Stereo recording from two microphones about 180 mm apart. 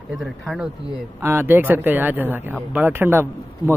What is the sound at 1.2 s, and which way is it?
Speech, 10° right (ahead or behind).